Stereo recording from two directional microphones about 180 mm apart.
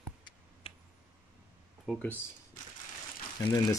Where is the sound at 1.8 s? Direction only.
Centre (ahead or behind).